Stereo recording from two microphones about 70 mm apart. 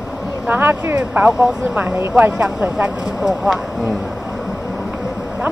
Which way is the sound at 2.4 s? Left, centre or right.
Centre.